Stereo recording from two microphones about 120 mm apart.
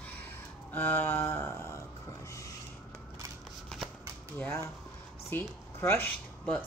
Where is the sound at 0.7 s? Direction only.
15° left (ahead or behind).